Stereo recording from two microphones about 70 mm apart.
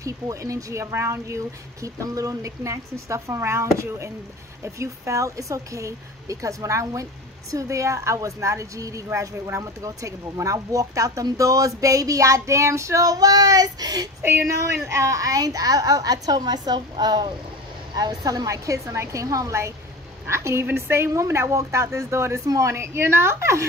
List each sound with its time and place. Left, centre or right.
0.0 s speech: right
14.9 s a woman's voice: right
17.9 s speech: right